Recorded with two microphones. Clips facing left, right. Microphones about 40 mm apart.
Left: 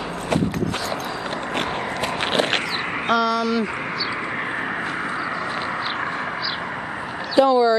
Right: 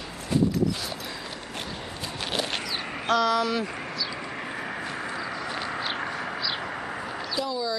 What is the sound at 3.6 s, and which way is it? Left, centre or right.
Vehicle, left.